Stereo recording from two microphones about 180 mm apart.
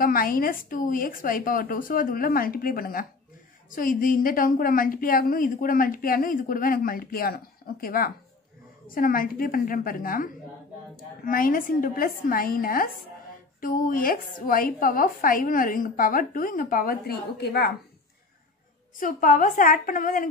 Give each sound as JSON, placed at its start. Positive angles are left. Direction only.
{"t": 0.0, "sound": "a woman's voice", "side_deg": 55}
{"t": 18.9, "sound": "a woman's voice", "side_deg": 45}